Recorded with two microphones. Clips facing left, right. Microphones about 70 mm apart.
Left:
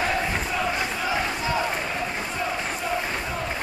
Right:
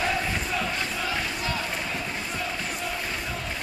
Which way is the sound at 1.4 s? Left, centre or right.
Left.